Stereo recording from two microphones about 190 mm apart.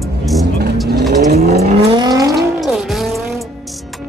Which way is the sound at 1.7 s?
25° right (ahead or behind).